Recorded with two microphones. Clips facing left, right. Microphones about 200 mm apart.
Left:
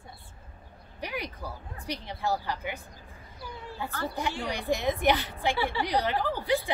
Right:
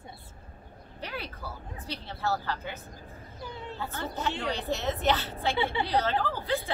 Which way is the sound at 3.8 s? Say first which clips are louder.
Left 1 dB; 15° left (ahead or behind).